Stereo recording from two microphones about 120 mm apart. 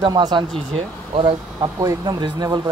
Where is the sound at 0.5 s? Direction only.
55° right (ahead or behind).